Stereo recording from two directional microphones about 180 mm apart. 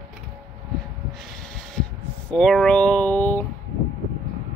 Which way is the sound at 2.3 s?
5° left (ahead or behind).